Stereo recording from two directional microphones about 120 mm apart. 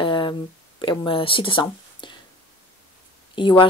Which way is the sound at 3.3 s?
45° left (ahead or behind).